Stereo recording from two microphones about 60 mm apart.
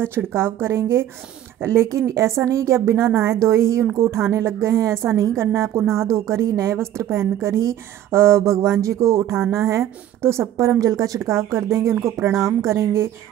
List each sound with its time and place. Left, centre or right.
0.3 s a woman's voice: right
1.9 s a woman's voice: right
10.8 s a woman's voice: right
11.1 s a woman's voice: right
12.7 s a woman's voice: right